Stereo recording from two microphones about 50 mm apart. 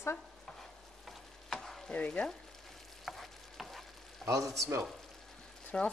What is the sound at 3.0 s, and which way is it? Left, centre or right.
Frying, centre.